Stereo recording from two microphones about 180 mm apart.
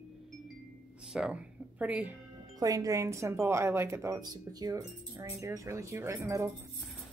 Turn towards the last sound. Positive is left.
turn(degrees=-15)  # may be behind; listen again after turning